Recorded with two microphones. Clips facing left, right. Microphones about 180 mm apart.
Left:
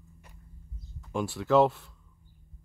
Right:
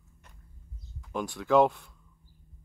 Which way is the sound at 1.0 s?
5° left (ahead or behind).